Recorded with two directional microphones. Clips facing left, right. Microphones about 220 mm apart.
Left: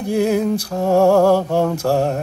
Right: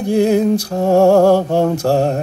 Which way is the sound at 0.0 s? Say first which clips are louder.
Right 4 dB; 25° right (ahead or behind).